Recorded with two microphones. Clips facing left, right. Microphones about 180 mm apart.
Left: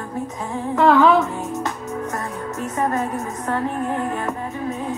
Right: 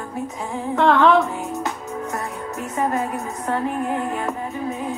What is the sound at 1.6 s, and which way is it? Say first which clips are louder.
Music: left 1 dB; 15° right (ahead or behind).